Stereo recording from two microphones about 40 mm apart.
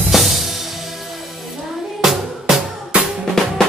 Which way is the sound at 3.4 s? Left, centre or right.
Centre.